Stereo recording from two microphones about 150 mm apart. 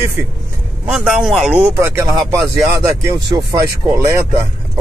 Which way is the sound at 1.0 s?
Centre (ahead or behind).